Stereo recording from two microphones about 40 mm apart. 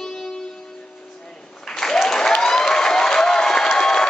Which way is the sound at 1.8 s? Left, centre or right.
Centre.